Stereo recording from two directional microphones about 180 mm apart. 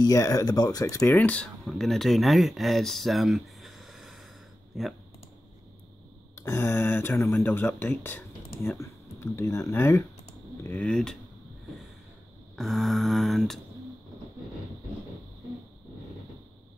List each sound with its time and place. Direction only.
0.0 s speech: 20° left (ahead or behind); by 4.9 s centre (ahead or behind)
6.3 s speech: 15° left (ahead or behind)
12.5 s speech: centre (ahead or behind)